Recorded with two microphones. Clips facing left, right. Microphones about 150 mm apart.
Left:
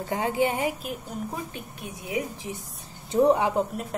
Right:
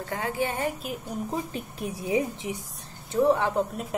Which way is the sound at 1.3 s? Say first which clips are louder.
Right 4 dB; 35° right (ahead or behind).